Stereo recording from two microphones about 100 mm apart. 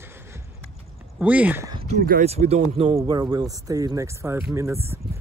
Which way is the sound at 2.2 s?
90° right.